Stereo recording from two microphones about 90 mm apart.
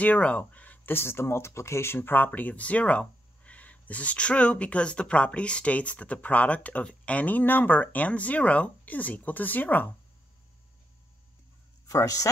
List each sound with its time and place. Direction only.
0.0 s speech: 15° left (ahead or behind)
11.8 s speech: 40° left (ahead or behind)